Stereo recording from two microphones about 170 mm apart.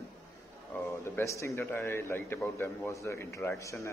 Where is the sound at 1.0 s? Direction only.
15° left (ahead or behind).